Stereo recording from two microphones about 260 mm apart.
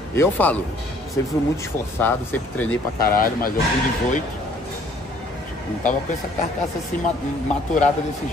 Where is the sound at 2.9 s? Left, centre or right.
Left.